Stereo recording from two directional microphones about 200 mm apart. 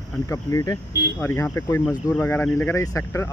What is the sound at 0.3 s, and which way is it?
Speech, 15° left (ahead or behind).